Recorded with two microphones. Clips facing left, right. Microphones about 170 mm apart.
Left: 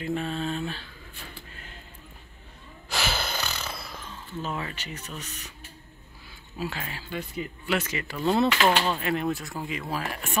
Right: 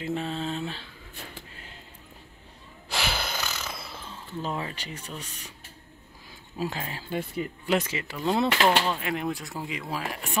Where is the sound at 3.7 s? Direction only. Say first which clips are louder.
Even; 25° right (ahead or behind).